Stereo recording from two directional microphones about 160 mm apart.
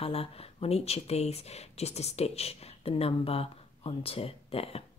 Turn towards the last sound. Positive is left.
turn(degrees=40)  # may be behind; listen again after turning